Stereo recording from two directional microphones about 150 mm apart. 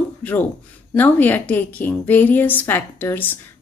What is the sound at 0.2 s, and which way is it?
Speech, 10° left (ahead or behind).